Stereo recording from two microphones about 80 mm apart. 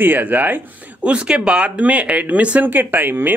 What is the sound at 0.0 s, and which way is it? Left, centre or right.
Speech, right.